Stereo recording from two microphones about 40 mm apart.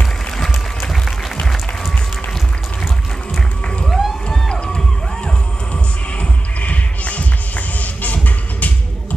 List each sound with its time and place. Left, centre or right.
0.8 s applause: centre
3.3 s music: centre
3.9 s a sound: centre
6.1 s music: left